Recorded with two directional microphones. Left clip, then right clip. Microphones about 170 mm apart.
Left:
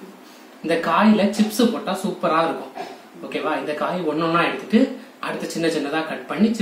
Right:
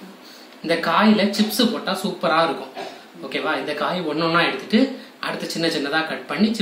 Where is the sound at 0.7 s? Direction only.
5° left (ahead or behind).